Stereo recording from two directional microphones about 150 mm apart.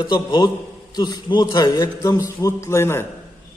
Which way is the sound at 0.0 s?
30° left (ahead or behind).